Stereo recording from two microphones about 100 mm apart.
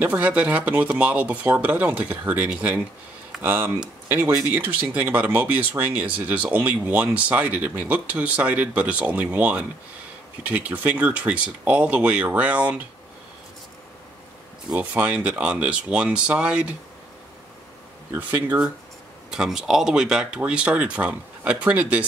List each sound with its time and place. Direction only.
0.0 s speech: 15° right (ahead or behind)
14.7 s speech: 15° right (ahead or behind)
18.1 s speech: 15° right (ahead or behind)